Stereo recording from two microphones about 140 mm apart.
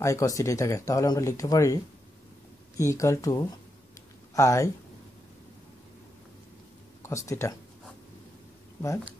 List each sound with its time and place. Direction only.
0.0 s speech: 25° left (ahead or behind)
2.8 s speech: 20° left (ahead or behind)
7.0 s speech: 20° left (ahead or behind)